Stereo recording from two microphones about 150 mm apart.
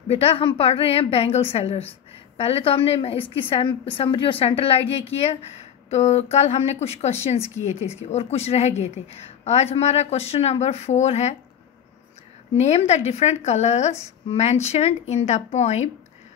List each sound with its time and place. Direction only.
0.1 s a woman's voice: 40° left (ahead or behind)
12.5 s a woman's voice: 45° left (ahead or behind)